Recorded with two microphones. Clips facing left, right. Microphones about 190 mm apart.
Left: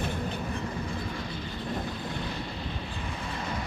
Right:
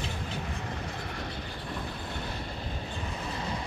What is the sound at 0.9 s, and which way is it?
Vehicle, 65° right (ahead or behind).